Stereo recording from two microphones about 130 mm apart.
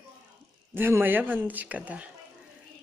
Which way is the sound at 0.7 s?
15° right (ahead or behind).